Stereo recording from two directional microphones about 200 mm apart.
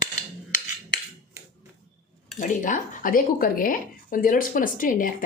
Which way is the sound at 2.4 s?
40° left (ahead or behind).